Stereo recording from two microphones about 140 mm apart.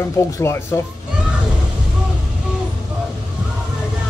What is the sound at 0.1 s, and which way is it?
Speech, 20° left (ahead or behind).